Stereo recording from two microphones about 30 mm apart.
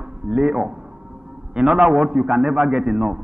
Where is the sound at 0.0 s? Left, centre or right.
Right.